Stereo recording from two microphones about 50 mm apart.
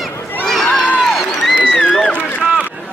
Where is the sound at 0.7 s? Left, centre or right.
Left.